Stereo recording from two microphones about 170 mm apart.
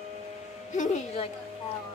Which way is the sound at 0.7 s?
45° left (ahead or behind).